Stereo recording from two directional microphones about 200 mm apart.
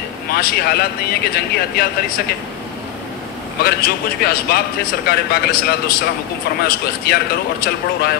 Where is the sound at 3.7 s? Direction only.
50° left (ahead or behind).